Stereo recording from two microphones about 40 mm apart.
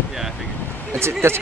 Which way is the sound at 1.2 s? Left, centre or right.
Right.